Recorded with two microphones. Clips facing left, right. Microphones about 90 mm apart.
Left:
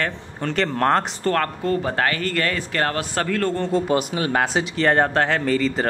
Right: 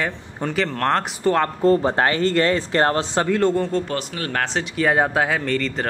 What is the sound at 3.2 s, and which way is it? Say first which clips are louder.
Speech: right 4 dB; 15° right (ahead or behind).